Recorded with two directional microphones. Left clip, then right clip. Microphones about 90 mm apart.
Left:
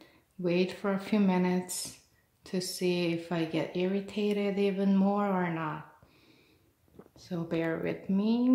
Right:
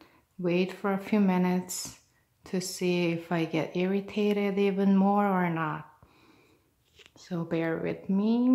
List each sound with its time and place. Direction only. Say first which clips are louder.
0.0 s speech: right 1 dB; 15° right (ahead or behind)
7.2 s speech: right 2 dB; 20° right (ahead or behind)